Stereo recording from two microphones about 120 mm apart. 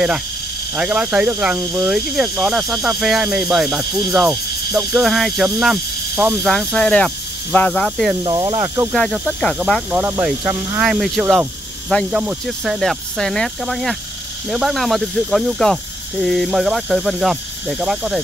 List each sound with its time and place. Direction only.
0.7 s speech: 10° right (ahead or behind)
1.6 s speech: 30° right (ahead or behind)
1.9 s speech: 5° right (ahead or behind)
8.2 s speech: 40° right (ahead or behind)
8.5 s speech: 25° right (ahead or behind)
8.9 s speech: 5° left (ahead or behind)
9.8 s speech: 15° right (ahead or behind)
10.8 s speech: centre (ahead or behind)